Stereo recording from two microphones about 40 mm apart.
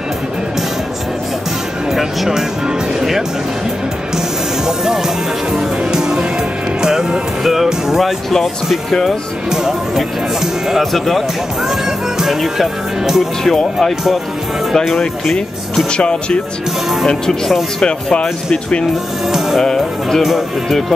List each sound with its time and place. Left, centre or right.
1.9 s music: centre
4.6 s music: centre
9.5 s speech: centre
13.4 s speech: centre
15.9 s speech: left
17.8 s speech: left
19.3 s speech: centre